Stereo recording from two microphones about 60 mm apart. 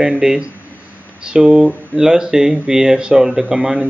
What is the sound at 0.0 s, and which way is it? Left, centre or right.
Speech, centre.